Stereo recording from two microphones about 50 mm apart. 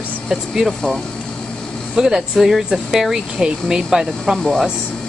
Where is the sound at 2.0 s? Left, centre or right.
Centre.